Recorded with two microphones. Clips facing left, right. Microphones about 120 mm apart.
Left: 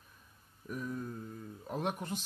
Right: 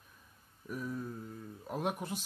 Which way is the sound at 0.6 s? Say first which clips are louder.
Even; centre (ahead or behind).